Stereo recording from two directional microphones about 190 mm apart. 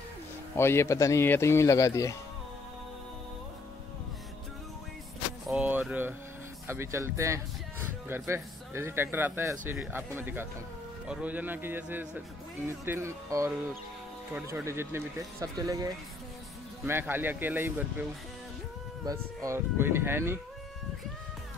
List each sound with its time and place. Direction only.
0.6 s speech: 15° left (ahead or behind)
5.5 s a sound: 5° right (ahead or behind)
6.7 s speech: 15° right (ahead or behind)
19.0 s speech: 15° right (ahead or behind)